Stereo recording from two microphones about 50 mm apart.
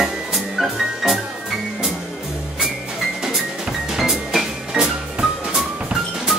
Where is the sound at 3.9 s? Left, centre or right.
Centre.